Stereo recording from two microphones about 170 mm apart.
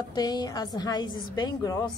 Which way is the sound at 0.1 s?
25° left (ahead or behind).